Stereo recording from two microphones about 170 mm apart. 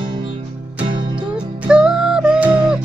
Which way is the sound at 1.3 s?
5° right (ahead or behind).